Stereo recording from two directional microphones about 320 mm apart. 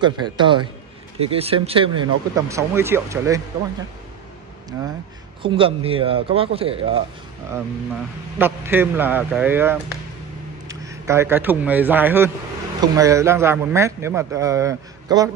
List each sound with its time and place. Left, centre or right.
0.0 s speech: centre
4.7 s speech: centre
8.4 s speech: centre
10.9 s speech: centre